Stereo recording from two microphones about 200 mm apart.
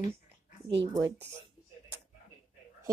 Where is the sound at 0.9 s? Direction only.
15° right (ahead or behind).